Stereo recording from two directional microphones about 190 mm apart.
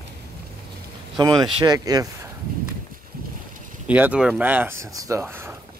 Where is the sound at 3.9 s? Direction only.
5° right (ahead or behind).